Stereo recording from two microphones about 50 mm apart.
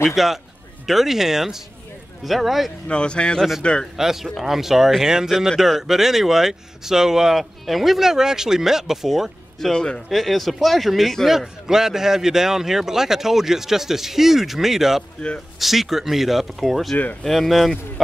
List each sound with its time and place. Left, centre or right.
0.0 s speech: centre
2.9 s a man's voice: left
3.9 s speech: centre
9.7 s speech: centre
10.0 s speech: centre
16.9 s speech: left
17.2 s speech: centre